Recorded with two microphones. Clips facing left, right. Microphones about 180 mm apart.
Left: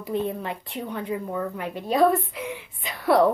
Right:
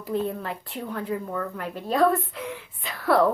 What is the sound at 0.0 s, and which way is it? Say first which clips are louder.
Speech: even; centre (ahead or behind).